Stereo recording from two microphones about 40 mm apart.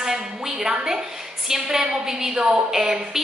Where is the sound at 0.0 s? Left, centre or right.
Centre.